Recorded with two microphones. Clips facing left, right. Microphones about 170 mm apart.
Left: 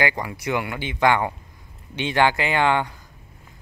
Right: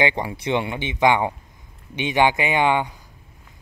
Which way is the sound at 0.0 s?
25° right (ahead or behind).